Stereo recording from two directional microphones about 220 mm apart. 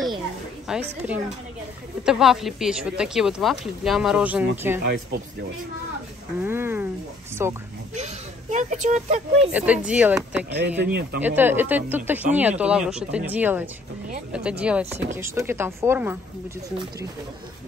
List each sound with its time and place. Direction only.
0.7 s speech: 5° right (ahead or behind)
4.8 s speech: 50° right (ahead or behind)
6.4 s a sound: 10° right (ahead or behind)
7.4 s speech: 10° right (ahead or behind)
7.9 s speech: 30° right (ahead or behind)
9.5 s speech: 5° right (ahead or behind)
10.9 s speech: 45° right (ahead or behind)
11.1 s speech: 10° right (ahead or behind)